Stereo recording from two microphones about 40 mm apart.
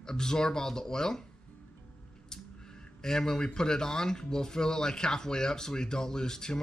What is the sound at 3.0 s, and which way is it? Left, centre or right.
Speech, centre.